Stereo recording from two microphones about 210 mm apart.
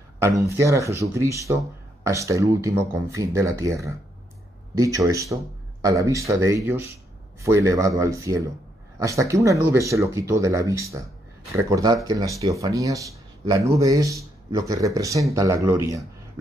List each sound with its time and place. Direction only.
0.2 s speech: 15° right (ahead or behind)